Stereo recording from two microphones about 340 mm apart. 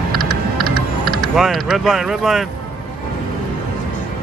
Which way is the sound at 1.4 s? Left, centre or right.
Centre.